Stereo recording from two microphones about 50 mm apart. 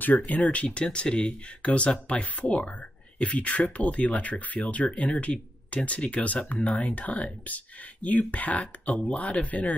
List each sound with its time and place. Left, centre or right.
0.0 s speech: left
0.7 s speech: centre; by 9.8 s left